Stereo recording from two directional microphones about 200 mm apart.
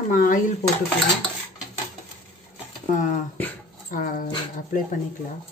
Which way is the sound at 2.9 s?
40° left (ahead or behind).